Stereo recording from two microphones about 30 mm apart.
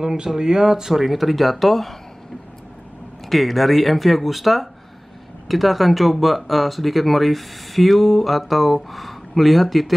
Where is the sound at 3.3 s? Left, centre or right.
Centre.